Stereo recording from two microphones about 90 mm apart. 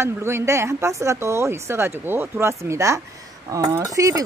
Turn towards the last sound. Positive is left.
turn(degrees=-40)  # may be behind; listen again after turning